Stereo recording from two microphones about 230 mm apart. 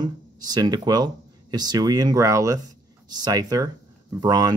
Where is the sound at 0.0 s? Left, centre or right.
Centre.